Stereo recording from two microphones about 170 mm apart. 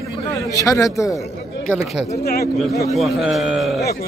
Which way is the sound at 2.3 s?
65° left (ahead or behind).